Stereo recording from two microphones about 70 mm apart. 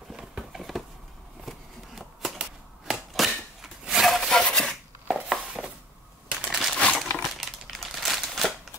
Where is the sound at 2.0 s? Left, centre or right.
Centre.